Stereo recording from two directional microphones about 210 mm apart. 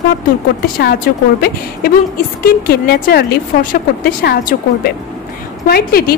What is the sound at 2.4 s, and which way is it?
A woman's voice, 45° left (ahead or behind).